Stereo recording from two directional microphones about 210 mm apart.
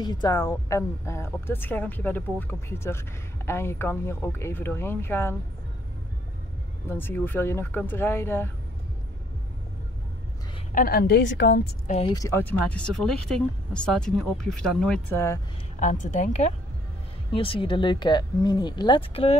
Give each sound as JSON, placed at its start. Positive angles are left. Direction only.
{"t": 0.0, "sound": "speech", "side_deg": 20}
{"t": 6.9, "sound": "speech", "side_deg": 10}
{"t": 10.7, "sound": "a woman's voice", "side_deg": 45}
{"t": 12.1, "sound": "speech", "side_deg": 15}
{"t": 15.8, "sound": "a woman's voice", "side_deg": 35}